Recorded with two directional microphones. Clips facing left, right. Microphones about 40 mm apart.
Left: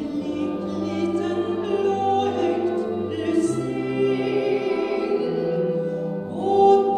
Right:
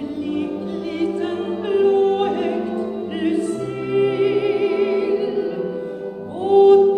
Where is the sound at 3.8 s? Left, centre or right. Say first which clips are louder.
Right 6 dB; centre.